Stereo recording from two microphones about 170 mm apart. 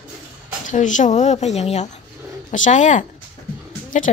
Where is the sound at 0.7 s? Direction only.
45° left (ahead or behind).